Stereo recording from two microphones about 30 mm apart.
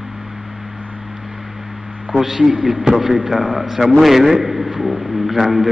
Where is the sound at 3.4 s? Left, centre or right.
Right.